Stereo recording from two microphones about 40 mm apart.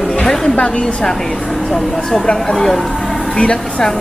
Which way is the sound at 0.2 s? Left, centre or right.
Centre.